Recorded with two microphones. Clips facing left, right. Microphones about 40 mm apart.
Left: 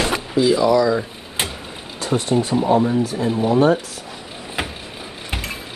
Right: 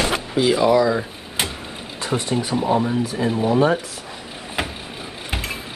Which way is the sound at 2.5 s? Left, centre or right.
Centre.